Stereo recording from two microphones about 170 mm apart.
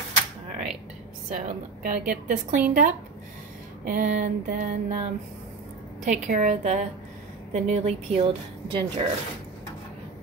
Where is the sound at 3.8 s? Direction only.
50° right (ahead or behind).